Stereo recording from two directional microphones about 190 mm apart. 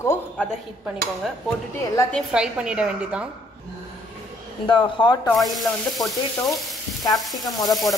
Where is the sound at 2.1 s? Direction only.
5° right (ahead or behind).